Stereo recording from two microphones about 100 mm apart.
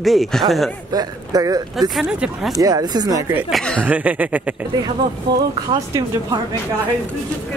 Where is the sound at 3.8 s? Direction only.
15° right (ahead or behind).